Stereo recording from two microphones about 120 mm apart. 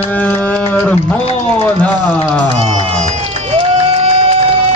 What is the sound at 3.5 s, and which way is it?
Crowd, 60° right (ahead or behind).